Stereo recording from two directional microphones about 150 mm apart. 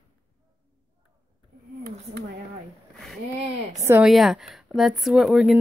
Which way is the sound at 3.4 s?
45° right (ahead or behind).